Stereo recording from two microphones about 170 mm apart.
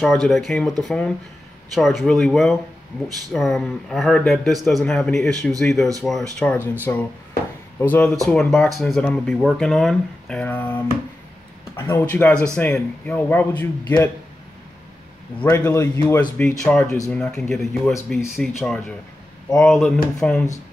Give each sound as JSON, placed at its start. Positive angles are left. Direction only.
{"t": 0.0, "sound": "a man's voice", "side_deg": 0}
{"t": 15.4, "sound": "a man's voice", "side_deg": 15}
{"t": 17.2, "sound": "speech", "side_deg": 5}